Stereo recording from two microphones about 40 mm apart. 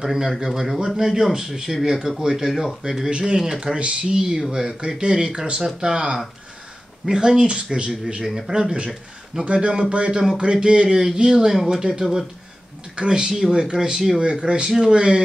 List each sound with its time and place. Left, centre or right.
0.0 s speech: centre
3.1 s speech: right